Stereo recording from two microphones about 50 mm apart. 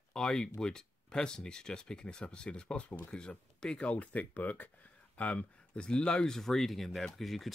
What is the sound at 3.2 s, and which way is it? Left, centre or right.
Speech, centre.